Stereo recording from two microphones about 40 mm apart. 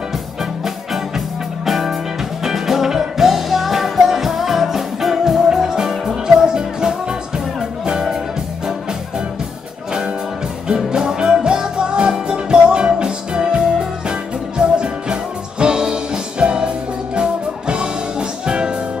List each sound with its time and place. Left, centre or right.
1.7 s music: centre
10.7 s music: centre
14.6 s music: right